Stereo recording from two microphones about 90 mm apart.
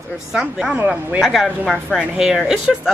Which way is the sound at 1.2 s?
Centre (ahead or behind).